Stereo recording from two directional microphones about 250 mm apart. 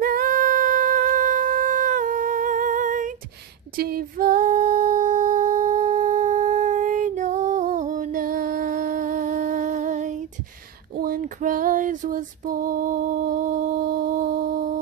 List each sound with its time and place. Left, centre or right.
0.0 s wind instrument: right
3.7 s music: right
11.0 s female singing: right